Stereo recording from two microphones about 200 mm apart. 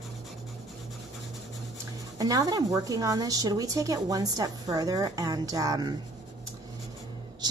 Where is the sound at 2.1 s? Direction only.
20° right (ahead or behind).